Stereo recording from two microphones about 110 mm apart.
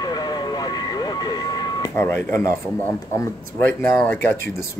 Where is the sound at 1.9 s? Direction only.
20° left (ahead or behind).